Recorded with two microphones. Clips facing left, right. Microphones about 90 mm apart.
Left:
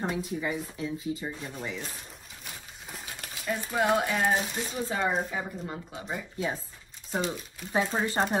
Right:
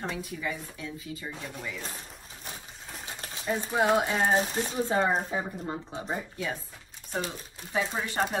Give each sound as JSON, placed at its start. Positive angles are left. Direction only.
{"t": 0.1, "sound": "speech", "side_deg": 25}
{"t": 3.1, "sound": "speech", "side_deg": -25}
{"t": 4.4, "sound": "speech", "side_deg": -35}
{"t": 5.4, "sound": "speech", "side_deg": -15}
{"t": 5.9, "sound": "speech", "side_deg": -30}
{"t": 6.3, "sound": "speech", "side_deg": 30}